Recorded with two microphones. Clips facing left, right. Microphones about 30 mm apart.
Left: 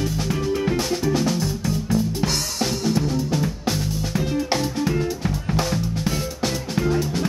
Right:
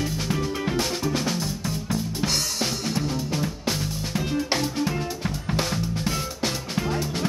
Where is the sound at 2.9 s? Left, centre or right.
Centre.